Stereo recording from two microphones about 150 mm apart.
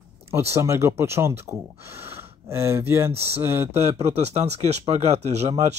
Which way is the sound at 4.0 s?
45° right (ahead or behind).